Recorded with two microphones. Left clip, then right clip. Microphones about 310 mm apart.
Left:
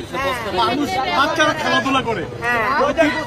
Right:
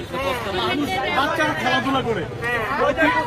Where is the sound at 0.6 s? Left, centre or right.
Left.